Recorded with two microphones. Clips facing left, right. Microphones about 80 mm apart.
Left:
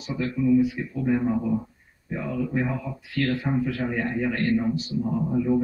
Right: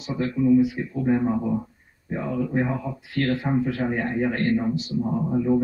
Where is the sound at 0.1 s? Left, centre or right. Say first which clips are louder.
Right 2 dB; right.